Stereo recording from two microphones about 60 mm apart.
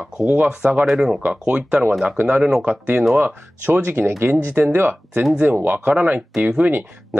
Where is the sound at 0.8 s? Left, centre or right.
Centre.